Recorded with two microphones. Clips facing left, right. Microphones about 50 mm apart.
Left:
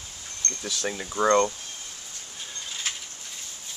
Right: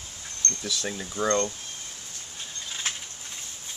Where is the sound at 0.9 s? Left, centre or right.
Left.